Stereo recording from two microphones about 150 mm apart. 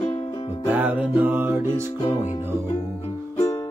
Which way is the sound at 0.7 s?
10° right (ahead or behind).